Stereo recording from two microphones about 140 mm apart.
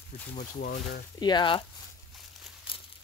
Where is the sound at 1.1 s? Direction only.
30° left (ahead or behind).